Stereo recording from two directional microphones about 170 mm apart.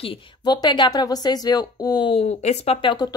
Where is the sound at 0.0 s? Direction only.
30° left (ahead or behind).